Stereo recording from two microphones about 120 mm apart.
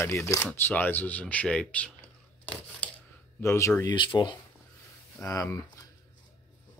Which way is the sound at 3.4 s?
20° left (ahead or behind).